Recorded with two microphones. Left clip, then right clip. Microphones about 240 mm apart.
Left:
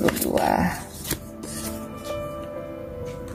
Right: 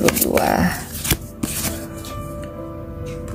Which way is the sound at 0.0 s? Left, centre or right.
Centre.